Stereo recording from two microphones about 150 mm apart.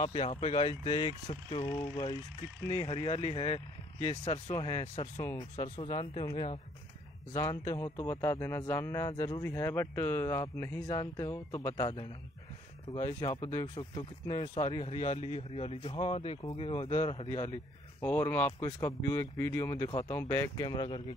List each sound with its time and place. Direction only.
0.0 s speech: 40° left (ahead or behind)
5.6 s speech: 35° left (ahead or behind)
7.3 s speech: 20° left (ahead or behind)
18.0 s speech: 15° left (ahead or behind); by 21.0 s 30° left (ahead or behind)